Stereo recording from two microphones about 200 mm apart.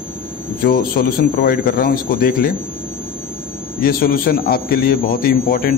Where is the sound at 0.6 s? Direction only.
50° left (ahead or behind).